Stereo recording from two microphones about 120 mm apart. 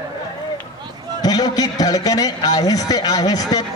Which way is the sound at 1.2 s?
30° left (ahead or behind).